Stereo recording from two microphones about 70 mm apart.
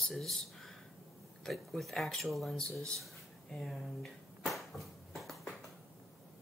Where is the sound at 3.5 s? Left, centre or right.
Centre.